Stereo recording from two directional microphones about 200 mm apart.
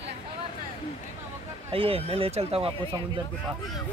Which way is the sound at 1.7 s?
30° right (ahead or behind).